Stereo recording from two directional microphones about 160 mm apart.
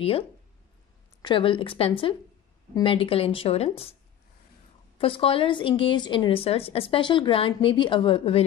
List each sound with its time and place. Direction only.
1.2 s speech: 30° left (ahead or behind)
4.9 s speech: 35° left (ahead or behind)